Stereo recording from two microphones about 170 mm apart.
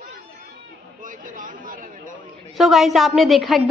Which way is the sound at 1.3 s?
50° right (ahead or behind).